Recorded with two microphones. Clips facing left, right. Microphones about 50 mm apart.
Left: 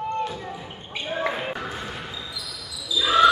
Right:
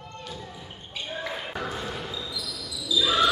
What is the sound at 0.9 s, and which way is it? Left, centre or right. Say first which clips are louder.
Basketball bounce: left 6 dB; left.